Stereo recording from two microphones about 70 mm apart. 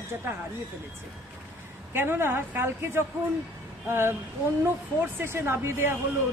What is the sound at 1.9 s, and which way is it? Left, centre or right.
A man's voice, right.